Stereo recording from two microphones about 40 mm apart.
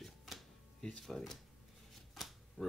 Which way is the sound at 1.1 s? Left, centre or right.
Centre.